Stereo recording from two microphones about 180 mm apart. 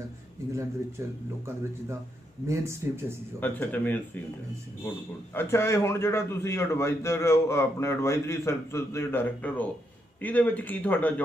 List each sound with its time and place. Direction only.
0.5 s speech: 15° right (ahead or behind)
3.3 s a man's voice: 10° left (ahead or behind)
5.3 s a man's voice: 10° left (ahead or behind)